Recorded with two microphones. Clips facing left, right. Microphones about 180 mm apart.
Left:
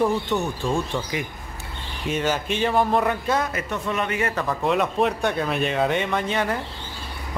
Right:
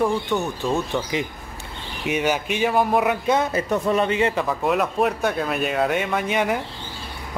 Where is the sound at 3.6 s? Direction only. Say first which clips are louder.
Right 6 dB; 40° right (ahead or behind); by 4.5 s 20° right (ahead or behind).